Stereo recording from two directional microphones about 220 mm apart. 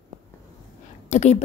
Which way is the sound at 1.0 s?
30° left (ahead or behind).